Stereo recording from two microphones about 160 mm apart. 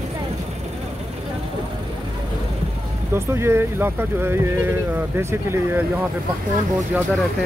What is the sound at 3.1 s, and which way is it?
Speech, 15° right (ahead or behind).